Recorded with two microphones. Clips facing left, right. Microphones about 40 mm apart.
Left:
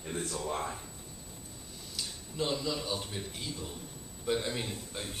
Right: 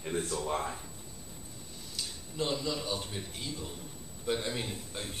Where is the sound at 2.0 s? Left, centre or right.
Centre.